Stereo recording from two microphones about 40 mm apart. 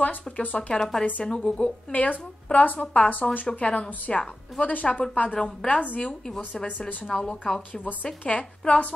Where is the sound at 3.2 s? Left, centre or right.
Centre; by 5.4 s left.